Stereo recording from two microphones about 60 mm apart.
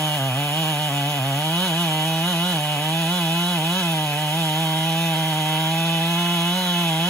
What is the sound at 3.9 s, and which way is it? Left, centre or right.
Chainsaw, left.